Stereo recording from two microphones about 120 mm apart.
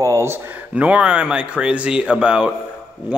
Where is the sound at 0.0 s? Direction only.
25° right (ahead or behind).